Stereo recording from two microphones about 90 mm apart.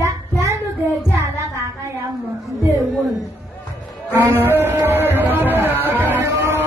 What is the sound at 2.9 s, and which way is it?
Speech, centre (ahead or behind).